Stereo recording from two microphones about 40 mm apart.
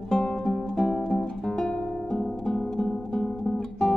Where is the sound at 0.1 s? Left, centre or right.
Centre.